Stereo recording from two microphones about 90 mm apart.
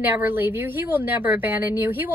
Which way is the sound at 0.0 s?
20° right (ahead or behind).